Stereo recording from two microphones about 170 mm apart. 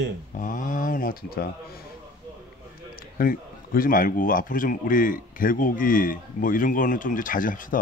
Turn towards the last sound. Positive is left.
turn(degrees=55)  # may be behind; listen again after turning